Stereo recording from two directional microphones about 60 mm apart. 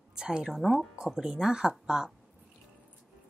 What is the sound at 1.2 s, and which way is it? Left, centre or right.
Speech, centre.